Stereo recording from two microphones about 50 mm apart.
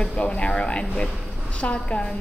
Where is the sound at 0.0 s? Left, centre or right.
Left.